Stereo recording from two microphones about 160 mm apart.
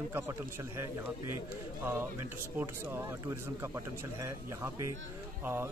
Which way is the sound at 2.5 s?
15° right (ahead or behind).